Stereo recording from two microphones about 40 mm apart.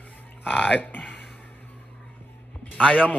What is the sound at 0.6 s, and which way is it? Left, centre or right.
Speech, left.